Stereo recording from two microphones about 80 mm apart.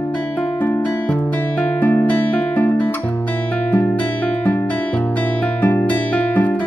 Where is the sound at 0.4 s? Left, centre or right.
Left.